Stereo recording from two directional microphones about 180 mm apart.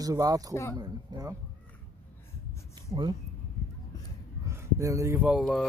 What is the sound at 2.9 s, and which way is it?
Speech, 25° right (ahead or behind).